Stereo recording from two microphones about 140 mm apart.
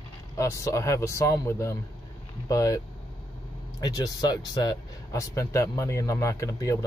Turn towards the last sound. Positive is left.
turn(degrees=25)  # may be behind; listen again after turning